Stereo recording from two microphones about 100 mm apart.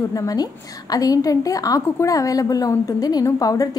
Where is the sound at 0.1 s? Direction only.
35° left (ahead or behind).